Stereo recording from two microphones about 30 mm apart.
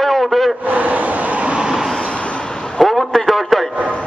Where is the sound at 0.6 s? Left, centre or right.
Right.